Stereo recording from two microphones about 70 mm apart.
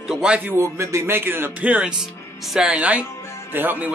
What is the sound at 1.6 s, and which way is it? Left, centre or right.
Speech, centre.